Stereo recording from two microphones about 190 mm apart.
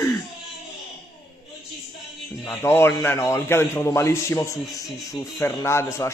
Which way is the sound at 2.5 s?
15° left (ahead or behind).